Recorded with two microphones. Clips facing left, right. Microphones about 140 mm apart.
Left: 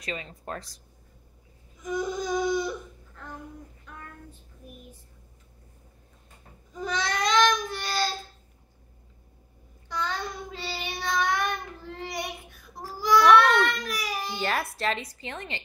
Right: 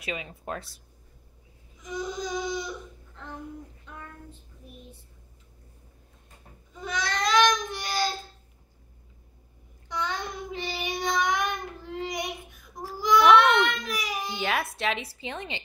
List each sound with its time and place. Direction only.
0.0 s speech: 10° right (ahead or behind)
1.8 s baby cry: 50° left (ahead or behind)
6.8 s baby cry: 30° left (ahead or behind)
7.2 s child singing: 15° right (ahead or behind)
9.8 s child singing: 20° right (ahead or behind)
13.0 s baby cry: 20° right (ahead or behind)
14.4 s a woman's voice: centre (ahead or behind)